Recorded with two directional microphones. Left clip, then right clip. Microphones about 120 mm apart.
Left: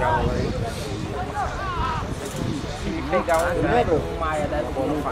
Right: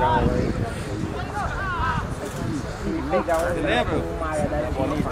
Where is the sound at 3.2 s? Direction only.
50° left (ahead or behind).